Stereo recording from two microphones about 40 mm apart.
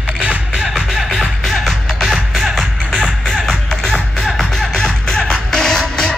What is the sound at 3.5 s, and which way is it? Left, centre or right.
Music, centre.